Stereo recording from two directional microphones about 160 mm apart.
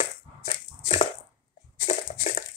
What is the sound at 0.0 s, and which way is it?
Crushing, 45° left (ahead or behind).